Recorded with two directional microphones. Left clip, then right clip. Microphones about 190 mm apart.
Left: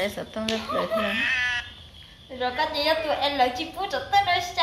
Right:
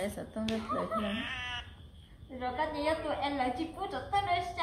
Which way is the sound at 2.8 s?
40° left (ahead or behind).